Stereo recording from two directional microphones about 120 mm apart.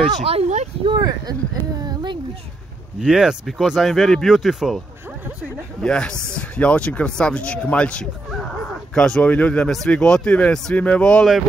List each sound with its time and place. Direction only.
0.2 s speech: 55° right (ahead or behind)
0.8 s speech: 35° right (ahead or behind)
3.0 s speech: 5° right (ahead or behind)